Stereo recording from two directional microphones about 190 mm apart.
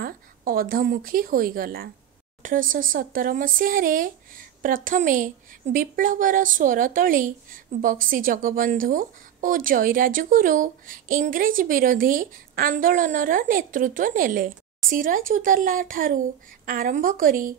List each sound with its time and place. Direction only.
0.0 s a woman's voice: 50° right (ahead or behind)